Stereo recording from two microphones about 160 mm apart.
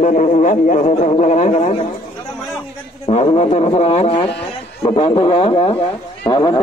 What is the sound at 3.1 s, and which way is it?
A man's voice, 40° left (ahead or behind).